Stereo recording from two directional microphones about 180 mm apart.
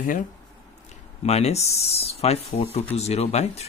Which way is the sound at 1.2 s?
35° left (ahead or behind).